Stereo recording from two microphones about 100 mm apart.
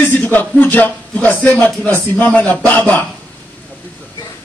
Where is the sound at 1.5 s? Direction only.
10° left (ahead or behind).